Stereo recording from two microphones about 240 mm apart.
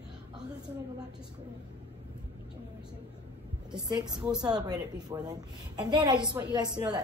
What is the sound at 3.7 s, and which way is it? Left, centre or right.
Speech, centre.